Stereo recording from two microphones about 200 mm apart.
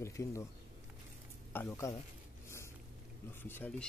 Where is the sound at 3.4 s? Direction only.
10° left (ahead or behind).